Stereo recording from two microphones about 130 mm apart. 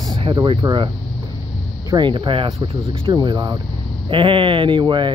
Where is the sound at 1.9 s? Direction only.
40° right (ahead or behind).